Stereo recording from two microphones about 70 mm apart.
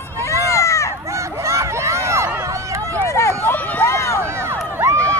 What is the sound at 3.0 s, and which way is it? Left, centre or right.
Run, left.